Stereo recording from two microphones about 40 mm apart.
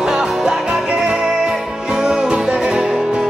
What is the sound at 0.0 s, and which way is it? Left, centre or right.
Music, centre.